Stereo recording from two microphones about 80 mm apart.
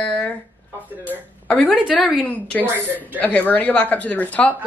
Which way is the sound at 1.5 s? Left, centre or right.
Centre.